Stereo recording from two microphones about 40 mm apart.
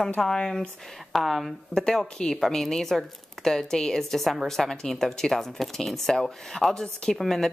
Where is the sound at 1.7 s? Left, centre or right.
Centre.